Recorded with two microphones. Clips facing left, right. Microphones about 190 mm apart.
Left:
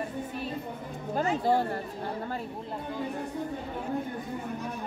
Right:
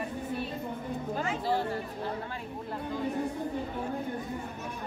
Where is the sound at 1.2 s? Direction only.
40° left (ahead or behind).